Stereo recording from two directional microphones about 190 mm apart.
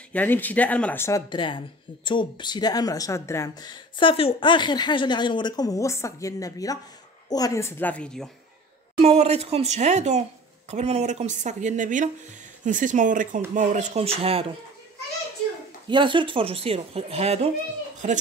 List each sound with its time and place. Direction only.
0.1 s speech: 10° left (ahead or behind)
1.3 s speech: 25° left (ahead or behind); by 8.3 s 5° left (ahead or behind)
8.9 s speech: 35° right (ahead or behind)
15.9 s speech: 25° right (ahead or behind)